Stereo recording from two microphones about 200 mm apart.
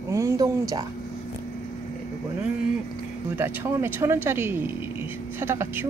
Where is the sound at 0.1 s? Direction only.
15° right (ahead or behind).